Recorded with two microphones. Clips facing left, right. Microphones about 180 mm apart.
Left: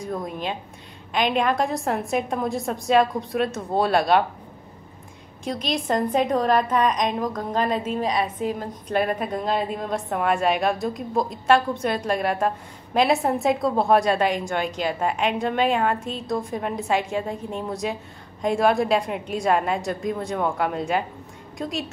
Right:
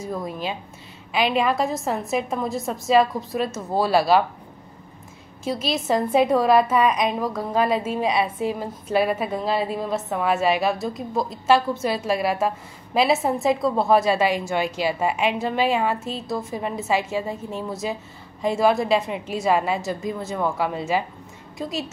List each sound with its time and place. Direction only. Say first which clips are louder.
0.0 s a woman's voice: even; 5° right (ahead or behind)
5.4 s a woman's voice: right 1 dB; 5° right (ahead or behind)